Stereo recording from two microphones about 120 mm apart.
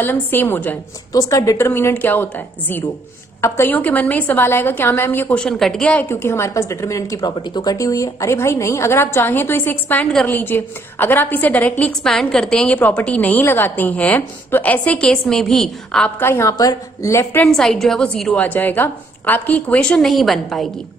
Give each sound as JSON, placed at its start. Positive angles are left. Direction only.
{"t": 0.0, "sound": "a woman's voice", "side_deg": 15}
{"t": 1.1, "sound": "a woman's voice", "side_deg": 30}
{"t": 3.3, "sound": "a woman's voice", "side_deg": 20}
{"t": 5.4, "sound": "a woman's voice", "side_deg": 5}
{"t": 6.0, "sound": "a woman's voice", "side_deg": 20}
{"t": 16.2, "sound": "a woman's voice", "side_deg": 20}
{"t": 17.5, "sound": "a woman's voice", "side_deg": 5}